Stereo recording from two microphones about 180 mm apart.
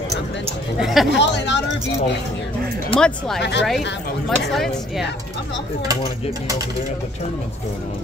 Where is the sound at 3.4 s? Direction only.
75° left (ahead or behind).